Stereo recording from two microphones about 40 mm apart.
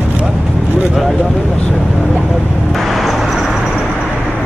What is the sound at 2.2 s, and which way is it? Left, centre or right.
Vehicle, centre.